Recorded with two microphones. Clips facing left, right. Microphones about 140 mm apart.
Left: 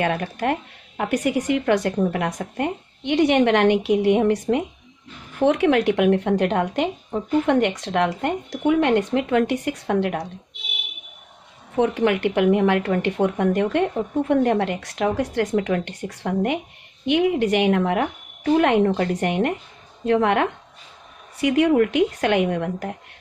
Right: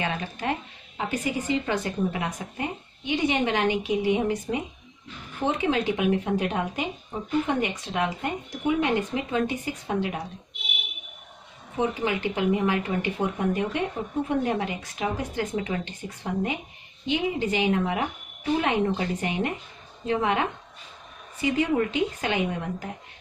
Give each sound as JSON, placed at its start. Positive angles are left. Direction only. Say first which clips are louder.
{"t": 0.0, "sound": "speech", "louder": "left 7 dB", "side_deg": 60}
{"t": 11.7, "sound": "speech", "louder": "left 7 dB", "side_deg": 65}